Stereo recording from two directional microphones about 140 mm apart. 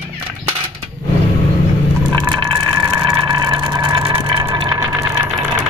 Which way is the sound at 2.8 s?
25° right (ahead or behind).